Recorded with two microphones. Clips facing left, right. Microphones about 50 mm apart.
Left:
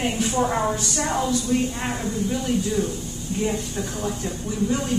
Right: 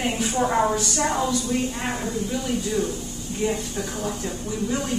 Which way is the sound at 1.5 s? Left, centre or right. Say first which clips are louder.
Left 5 dB; centre.